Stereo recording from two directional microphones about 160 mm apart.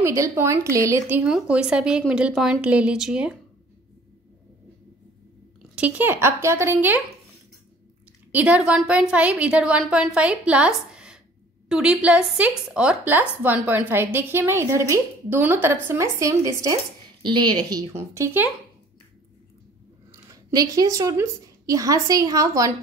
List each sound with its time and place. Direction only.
0.0 s a woman's voice: 20° right (ahead or behind)
5.8 s a woman's voice: 10° right (ahead or behind)
8.3 s a woman's voice: 10° right (ahead or behind)
20.1 s a woman's voice: 20° right (ahead or behind)